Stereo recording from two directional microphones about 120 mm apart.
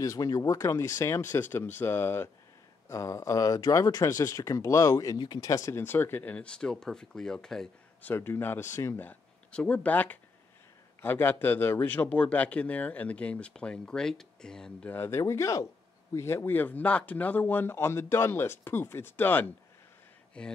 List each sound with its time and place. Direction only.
0.0 s speech: 30° left (ahead or behind); by 8.1 s 5° left (ahead or behind)
8.1 s speech: 15° left (ahead or behind)